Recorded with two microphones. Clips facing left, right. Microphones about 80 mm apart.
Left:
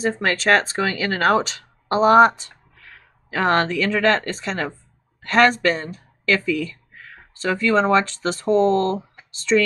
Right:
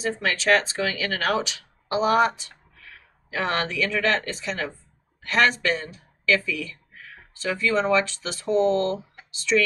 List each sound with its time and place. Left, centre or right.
0.0 s speech: left